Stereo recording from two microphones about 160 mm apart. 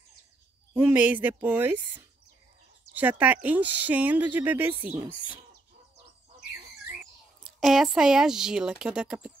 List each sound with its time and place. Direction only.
0.7 s speech: 10° right (ahead or behind)
7.4 s speech: centre (ahead or behind)